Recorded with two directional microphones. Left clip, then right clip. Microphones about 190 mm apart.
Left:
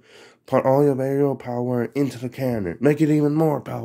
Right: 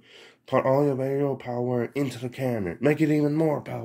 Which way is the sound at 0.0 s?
45° left (ahead or behind).